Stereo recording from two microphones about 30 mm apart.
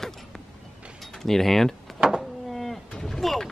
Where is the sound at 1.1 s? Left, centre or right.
Centre.